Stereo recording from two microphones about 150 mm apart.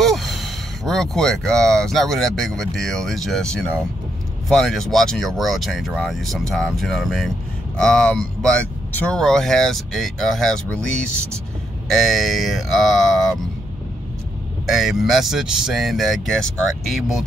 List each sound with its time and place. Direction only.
0.0 s speech: centre (ahead or behind)
14.7 s speech: centre (ahead or behind)